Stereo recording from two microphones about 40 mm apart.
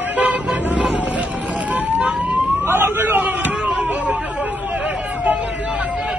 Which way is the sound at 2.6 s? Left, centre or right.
Right.